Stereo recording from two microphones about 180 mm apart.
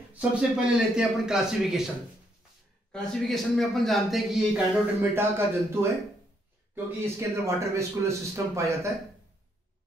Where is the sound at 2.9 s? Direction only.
Centre (ahead or behind).